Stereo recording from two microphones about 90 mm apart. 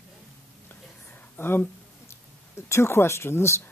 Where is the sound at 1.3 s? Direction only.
25° left (ahead or behind).